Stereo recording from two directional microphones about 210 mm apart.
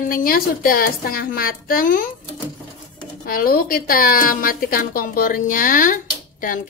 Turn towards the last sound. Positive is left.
turn(degrees=40)  # may be behind; listen again after turning